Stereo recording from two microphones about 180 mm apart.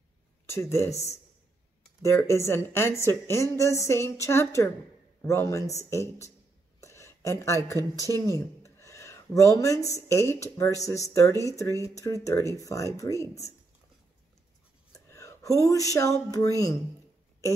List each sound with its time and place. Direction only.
0.5 s a woman's voice: 15° left (ahead or behind)
6.8 s a sound: 15° left (ahead or behind)
8.1 s a woman's voice: 15° left (ahead or behind)
15.0 s speech: 15° left (ahead or behind)